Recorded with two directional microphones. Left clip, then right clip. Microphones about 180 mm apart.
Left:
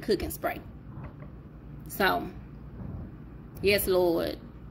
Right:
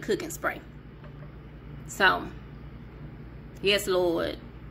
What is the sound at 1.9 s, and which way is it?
Speech, 15° left (ahead or behind).